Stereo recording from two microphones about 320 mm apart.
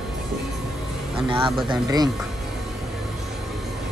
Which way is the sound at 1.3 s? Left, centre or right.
Centre.